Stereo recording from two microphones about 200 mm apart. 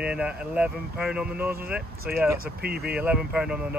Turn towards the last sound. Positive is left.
turn(degrees=-5)  # may be behind; listen again after turning